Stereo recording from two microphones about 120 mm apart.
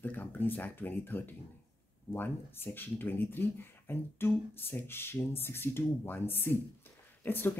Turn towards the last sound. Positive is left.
turn(degrees=15)  # may be behind; listen again after turning